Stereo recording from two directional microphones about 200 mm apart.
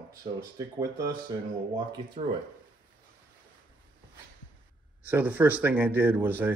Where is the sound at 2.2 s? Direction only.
35° right (ahead or behind).